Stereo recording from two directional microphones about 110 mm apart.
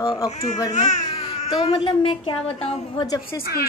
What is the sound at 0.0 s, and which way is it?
Speech, 35° left (ahead or behind).